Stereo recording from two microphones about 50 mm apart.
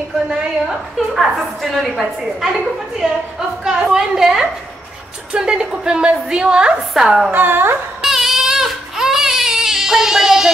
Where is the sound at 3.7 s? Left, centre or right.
Centre.